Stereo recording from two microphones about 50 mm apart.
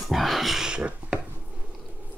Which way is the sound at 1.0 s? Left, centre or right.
Right.